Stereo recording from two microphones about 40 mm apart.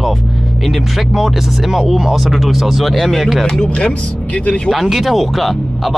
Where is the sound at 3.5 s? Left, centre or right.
Centre.